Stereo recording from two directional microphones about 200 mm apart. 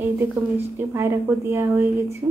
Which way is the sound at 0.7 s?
10° right (ahead or behind).